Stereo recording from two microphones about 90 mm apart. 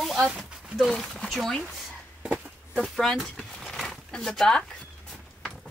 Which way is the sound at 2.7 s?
5° left (ahead or behind).